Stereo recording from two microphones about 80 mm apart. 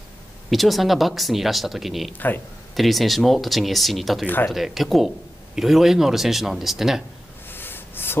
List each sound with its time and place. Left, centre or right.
0.5 s speech: centre
2.1 s speech: left
2.7 s speech: centre
7.4 s a sound: left